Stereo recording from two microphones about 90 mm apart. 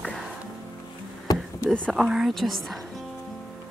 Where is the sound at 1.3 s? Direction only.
45° left (ahead or behind).